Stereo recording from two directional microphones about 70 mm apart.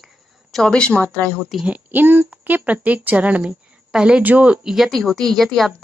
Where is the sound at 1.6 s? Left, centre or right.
Right.